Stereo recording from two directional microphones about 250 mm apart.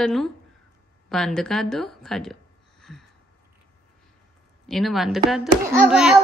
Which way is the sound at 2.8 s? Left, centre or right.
Centre.